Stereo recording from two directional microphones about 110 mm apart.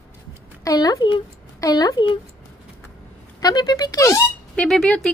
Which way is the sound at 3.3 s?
35° left (ahead or behind).